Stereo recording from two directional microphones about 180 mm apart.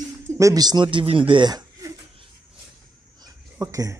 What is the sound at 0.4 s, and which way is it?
Speech, 20° right (ahead or behind).